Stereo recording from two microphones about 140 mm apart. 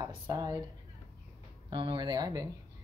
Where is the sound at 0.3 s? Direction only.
25° right (ahead or behind).